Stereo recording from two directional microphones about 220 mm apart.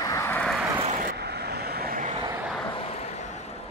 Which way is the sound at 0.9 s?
40° right (ahead or behind).